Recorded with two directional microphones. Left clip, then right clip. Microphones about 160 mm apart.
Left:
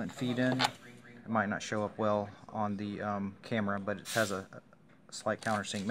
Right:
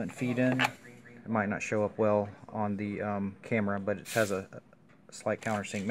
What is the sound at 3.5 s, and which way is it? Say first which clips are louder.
Speech: right 3 dB; 45° right (ahead or behind).